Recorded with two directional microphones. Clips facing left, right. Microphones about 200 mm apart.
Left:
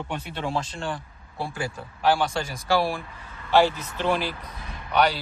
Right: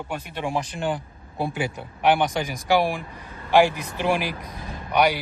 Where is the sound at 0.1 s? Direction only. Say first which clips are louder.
Right 2 dB; 15° right (ahead or behind).